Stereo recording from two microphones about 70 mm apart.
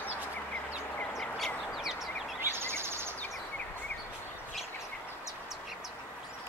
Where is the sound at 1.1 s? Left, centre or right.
Centre.